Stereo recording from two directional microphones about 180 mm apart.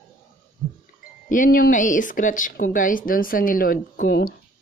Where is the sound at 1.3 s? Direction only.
50° left (ahead or behind).